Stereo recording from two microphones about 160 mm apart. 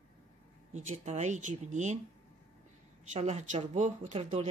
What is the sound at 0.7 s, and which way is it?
A woman's voice, 45° right (ahead or behind).